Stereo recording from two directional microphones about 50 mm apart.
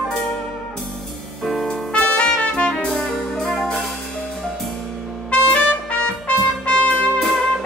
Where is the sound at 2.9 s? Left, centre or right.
Centre.